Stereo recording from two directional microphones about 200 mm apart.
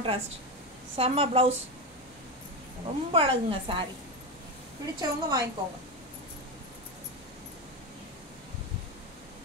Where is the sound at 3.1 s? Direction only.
25° right (ahead or behind).